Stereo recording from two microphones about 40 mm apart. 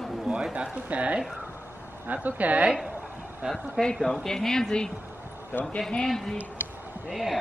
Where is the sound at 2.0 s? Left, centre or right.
Right.